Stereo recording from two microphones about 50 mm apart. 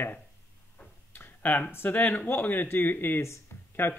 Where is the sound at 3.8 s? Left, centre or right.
Left.